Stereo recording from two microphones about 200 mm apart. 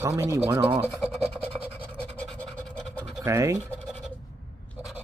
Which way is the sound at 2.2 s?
5° left (ahead or behind).